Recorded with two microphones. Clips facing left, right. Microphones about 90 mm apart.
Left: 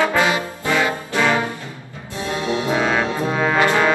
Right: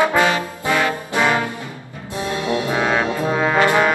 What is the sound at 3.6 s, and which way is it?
Music, 15° right (ahead or behind).